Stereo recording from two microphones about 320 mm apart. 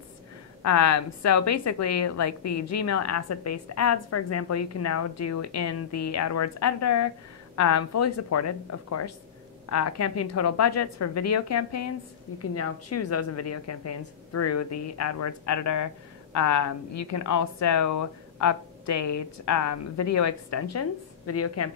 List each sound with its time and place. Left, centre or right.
0.6 s a woman's voice: left